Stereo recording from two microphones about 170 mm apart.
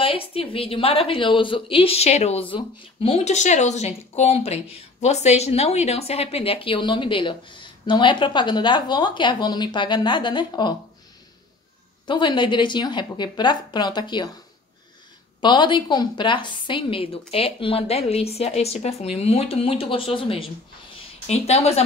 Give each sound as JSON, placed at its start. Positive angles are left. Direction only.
{"t": 0.0, "sound": "a woman's voice", "side_deg": 35}
{"t": 12.1, "sound": "a woman's voice", "side_deg": 30}
{"t": 15.4, "sound": "a woman's voice", "side_deg": 25}